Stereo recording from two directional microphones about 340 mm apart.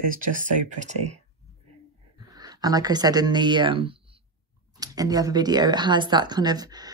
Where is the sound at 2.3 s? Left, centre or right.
Centre.